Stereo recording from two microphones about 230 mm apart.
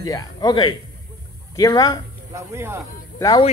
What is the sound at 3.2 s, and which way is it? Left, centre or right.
Speech, centre.